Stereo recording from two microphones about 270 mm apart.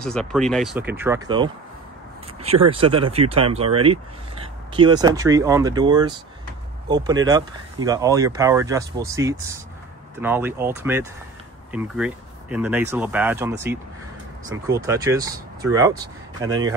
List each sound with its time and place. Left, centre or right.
0.0 s speech: centre